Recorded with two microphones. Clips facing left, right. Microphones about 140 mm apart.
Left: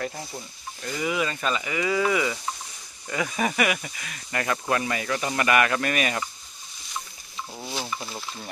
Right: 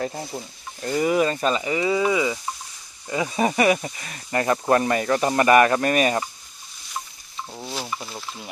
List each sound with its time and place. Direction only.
0.8 s speech: 40° right (ahead or behind)
7.5 s speech: centre (ahead or behind)